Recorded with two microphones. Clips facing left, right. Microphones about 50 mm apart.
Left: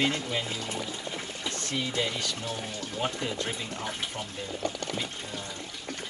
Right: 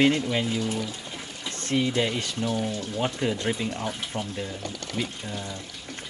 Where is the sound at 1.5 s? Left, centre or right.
Right.